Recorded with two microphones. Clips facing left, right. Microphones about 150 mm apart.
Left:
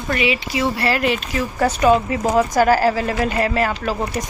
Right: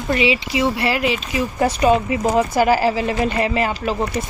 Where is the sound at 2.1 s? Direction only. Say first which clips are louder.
Right 1 dB; 40° left (ahead or behind).